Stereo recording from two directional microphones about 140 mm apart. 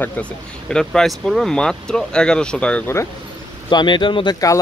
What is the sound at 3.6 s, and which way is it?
Speech, 35° left (ahead or behind).